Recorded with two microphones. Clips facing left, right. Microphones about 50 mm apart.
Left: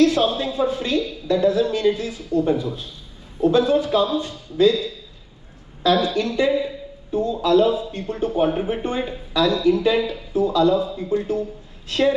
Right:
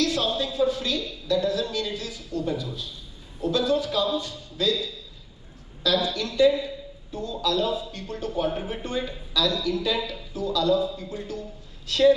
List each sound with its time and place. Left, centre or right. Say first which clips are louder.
0.0 s a woman's voice: left 8 dB; left